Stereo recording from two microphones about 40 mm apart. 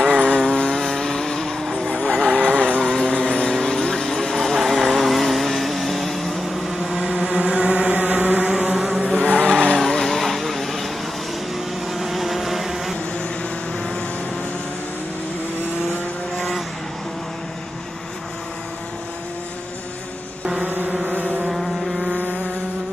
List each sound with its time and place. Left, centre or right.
0.0 s vehicle: left
1.6 s vehicle: centre
1.9 s vehicle: left
3.5 s vehicle: centre
4.6 s vehicle: centre
6.9 s vehicle: centre
7.2 s vehicle: right
8.5 s vehicle: right
9.5 s vehicle: centre
16.3 s vehicle: centre
21.5 s vehicle: centre